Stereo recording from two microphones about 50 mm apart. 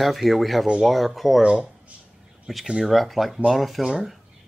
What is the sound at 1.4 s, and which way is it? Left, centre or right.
Speech, right.